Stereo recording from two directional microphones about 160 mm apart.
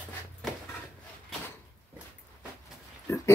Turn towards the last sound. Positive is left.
turn(degrees=15)  # may be behind; listen again after turning